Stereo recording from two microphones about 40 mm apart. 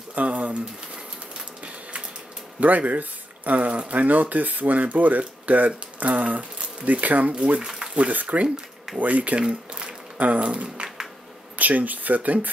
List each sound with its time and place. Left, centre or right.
0.1 s speech: right
2.6 s speech: right
9.5 s a sound: right
10.1 s speech: right
10.4 s speech: right
11.5 s speech: right